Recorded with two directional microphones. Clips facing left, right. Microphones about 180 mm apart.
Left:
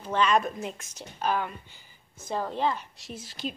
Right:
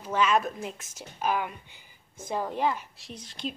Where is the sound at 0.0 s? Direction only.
10° right (ahead or behind).